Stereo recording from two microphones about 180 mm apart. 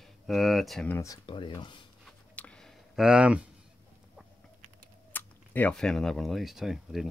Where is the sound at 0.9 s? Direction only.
15° left (ahead or behind).